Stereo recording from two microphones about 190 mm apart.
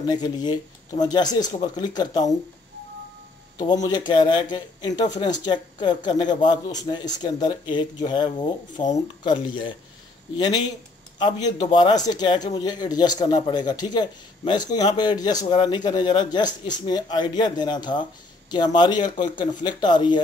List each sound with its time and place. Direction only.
0.0 s speech: 20° left (ahead or behind)
3.5 s speech: 20° left (ahead or behind)